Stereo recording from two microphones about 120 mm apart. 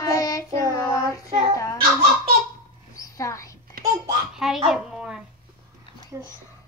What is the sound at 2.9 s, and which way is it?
Mouse, 30° left (ahead or behind).